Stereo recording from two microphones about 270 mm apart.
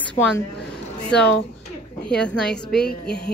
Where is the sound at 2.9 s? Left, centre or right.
Left.